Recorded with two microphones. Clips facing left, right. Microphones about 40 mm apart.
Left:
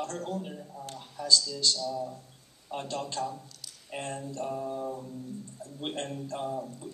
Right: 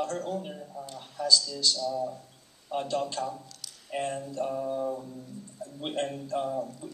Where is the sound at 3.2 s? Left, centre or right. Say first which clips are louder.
Even; right.